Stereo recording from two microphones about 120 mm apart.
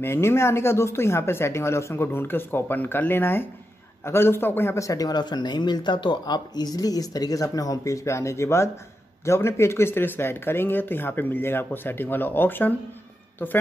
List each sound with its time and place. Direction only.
0.0 s a man's voice: 20° left (ahead or behind)